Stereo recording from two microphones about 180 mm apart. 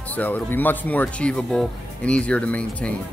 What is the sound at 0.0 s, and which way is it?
Speech, 10° left (ahead or behind).